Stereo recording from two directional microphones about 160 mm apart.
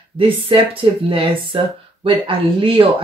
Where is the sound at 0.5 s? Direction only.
35° right (ahead or behind).